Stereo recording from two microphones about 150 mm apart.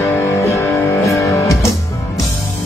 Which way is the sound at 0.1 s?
15° left (ahead or behind).